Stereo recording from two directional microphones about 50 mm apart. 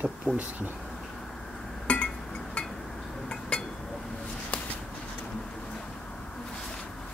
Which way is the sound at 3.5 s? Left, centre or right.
Left.